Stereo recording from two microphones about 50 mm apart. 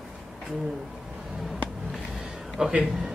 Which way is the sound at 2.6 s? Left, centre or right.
Centre.